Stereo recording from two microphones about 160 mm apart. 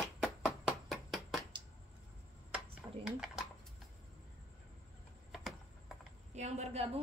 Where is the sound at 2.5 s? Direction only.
5° right (ahead or behind).